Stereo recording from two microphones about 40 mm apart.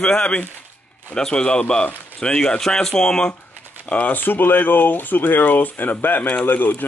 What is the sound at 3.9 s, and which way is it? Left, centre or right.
Speech, left.